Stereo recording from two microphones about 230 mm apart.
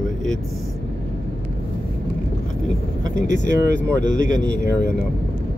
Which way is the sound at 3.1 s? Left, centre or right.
Right.